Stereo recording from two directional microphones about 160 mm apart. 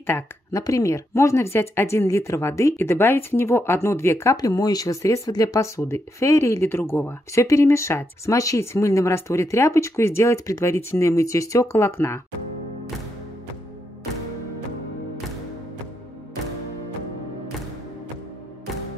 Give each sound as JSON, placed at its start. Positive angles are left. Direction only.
{"t": 0.0, "sound": "speech", "side_deg": 15}